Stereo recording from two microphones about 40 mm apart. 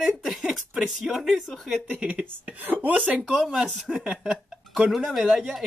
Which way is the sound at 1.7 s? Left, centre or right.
Right.